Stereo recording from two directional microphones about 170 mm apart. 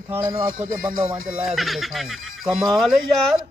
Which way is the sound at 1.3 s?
Centre (ahead or behind).